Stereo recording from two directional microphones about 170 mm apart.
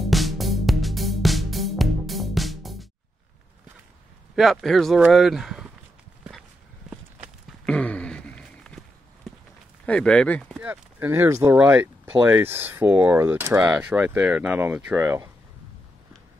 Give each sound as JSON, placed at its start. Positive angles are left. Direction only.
{"t": 0.0, "sound": "music", "side_deg": 0}
{"t": 4.4, "sound": "speech", "side_deg": 0}
{"t": 7.4, "sound": "walk", "side_deg": 5}
{"t": 9.8, "sound": "speech", "side_deg": 5}
{"t": 10.6, "sound": "speech", "side_deg": -10}